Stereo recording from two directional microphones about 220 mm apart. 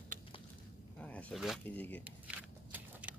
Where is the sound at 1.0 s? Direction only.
5° left (ahead or behind).